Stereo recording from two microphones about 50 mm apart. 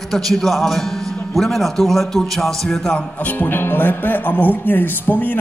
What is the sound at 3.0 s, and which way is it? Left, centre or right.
Speech, left.